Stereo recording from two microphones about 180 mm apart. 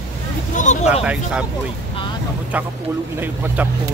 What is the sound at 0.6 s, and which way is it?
Vehicle, 45° left (ahead or behind).